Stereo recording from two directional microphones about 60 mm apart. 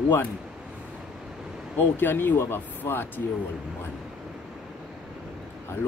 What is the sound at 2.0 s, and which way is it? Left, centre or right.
Speech, left.